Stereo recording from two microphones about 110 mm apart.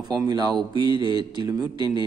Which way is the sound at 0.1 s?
40° right (ahead or behind).